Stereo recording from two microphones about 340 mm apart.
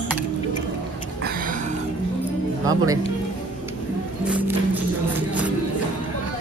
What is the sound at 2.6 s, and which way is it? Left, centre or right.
Music, centre.